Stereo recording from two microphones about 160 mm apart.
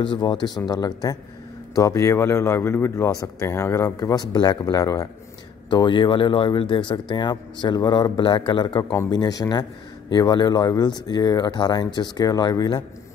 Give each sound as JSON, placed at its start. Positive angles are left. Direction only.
{"t": 0.0, "sound": "speech", "side_deg": 30}